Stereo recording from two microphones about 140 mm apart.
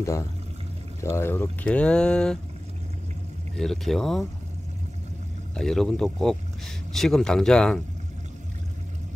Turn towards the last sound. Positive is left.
turn(degrees=5)  # may be behind; listen again after turning